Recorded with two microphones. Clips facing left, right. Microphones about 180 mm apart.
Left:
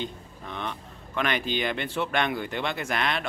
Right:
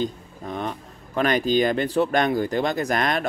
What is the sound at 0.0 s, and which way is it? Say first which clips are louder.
Speech: right 7 dB; 40° right (ahead or behind).